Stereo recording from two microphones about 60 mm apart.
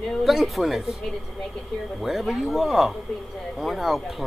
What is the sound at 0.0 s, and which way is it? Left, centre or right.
Speech, centre.